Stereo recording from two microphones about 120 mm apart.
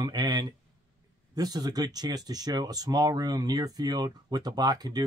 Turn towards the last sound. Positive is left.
turn(degrees=-35)  # may be behind; listen again after turning